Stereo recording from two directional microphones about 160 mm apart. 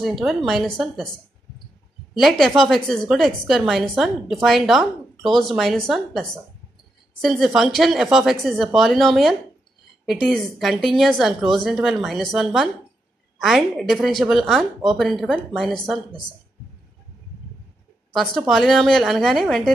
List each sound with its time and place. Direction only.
0.0 s a woman's voice: centre (ahead or behind)
2.1 s a woman's voice: centre (ahead or behind)
18.1 s a woman's voice: 5° left (ahead or behind)